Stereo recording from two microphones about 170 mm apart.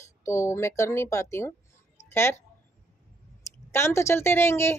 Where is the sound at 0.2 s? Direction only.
15° left (ahead or behind).